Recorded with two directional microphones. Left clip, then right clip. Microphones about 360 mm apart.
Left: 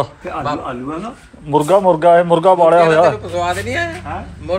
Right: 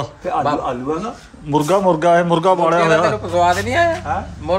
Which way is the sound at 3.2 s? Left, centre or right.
Right.